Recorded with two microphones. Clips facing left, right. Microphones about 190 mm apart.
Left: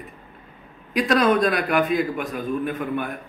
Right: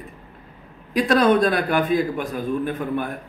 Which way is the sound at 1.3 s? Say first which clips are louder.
Right 1 dB; 30° right (ahead or behind).